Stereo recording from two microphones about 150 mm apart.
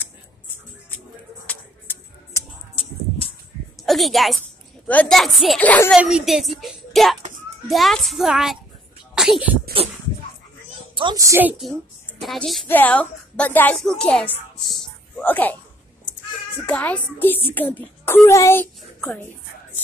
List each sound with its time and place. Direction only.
1.5 s a sound: 15° left (ahead or behind)
3.8 s a woman's voice: centre (ahead or behind)
5.9 s a woman's voice: 5° right (ahead or behind)
9.8 s a sound: 40° right (ahead or behind)
11.1 s a woman's voice: 20° right (ahead or behind)
12.2 s a woman's voice: centre (ahead or behind)
12.6 s speech: 10° left (ahead or behind)
16.6 s a woman's voice: 10° left (ahead or behind)
18.8 s a sound: 5° left (ahead or behind)